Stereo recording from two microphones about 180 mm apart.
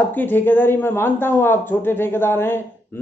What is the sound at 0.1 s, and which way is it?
Speech, 10° left (ahead or behind).